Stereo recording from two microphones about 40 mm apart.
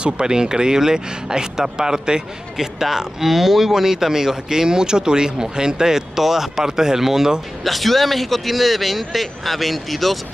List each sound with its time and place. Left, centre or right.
0.0 s speech: centre
7.6 s speech: centre